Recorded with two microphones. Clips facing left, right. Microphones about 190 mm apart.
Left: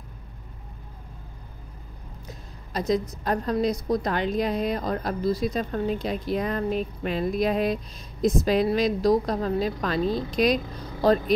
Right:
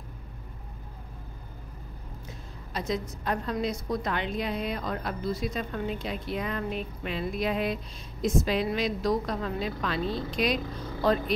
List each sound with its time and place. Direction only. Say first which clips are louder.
2.2 s a woman's voice: left 1 dB; 40° left (ahead or behind)